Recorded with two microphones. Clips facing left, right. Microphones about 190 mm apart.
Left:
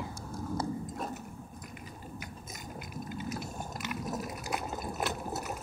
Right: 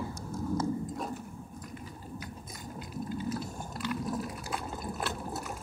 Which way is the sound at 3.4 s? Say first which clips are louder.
Right 1 dB; 15° left (ahead or behind).